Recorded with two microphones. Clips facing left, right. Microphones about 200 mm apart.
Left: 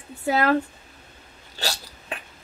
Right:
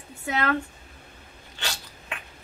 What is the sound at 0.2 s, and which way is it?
Speech, 35° left (ahead or behind).